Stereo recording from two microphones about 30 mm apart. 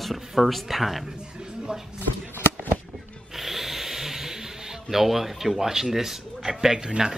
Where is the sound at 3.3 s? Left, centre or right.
Centre.